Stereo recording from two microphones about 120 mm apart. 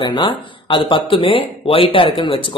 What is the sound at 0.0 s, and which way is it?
Speech, 40° left (ahead or behind).